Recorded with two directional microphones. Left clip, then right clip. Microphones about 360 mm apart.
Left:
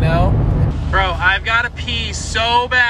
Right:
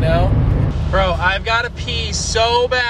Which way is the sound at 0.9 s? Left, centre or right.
Centre.